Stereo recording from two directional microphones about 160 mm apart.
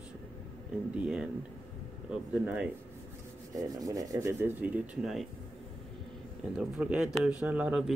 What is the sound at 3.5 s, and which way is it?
Rub, 20° right (ahead or behind).